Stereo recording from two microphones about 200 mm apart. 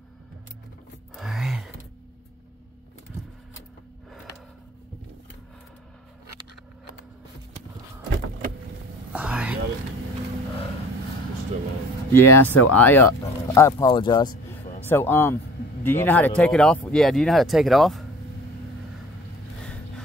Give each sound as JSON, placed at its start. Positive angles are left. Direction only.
{"t": 1.1, "sound": "gasp", "side_deg": 0}
{"t": 9.1, "sound": "whispering", "side_deg": -5}
{"t": 12.1, "sound": "speech", "side_deg": 10}
{"t": 14.9, "sound": "speech", "side_deg": 10}